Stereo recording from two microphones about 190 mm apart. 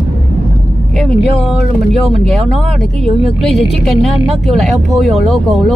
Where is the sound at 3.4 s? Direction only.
Centre (ahead or behind).